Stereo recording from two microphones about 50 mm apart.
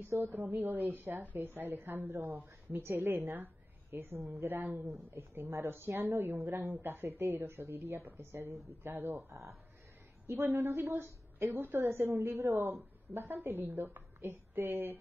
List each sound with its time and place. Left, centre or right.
0.2 s a woman's voice: right
4.3 s speech: right
4.6 s speech: right
4.8 s a woman's voice: right
9.1 s speech: right
10.2 s a woman's voice: right
12.4 s speech: right
13.1 s a woman's voice: right